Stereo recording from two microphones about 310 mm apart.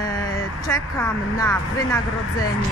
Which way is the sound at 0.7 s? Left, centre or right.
Centre.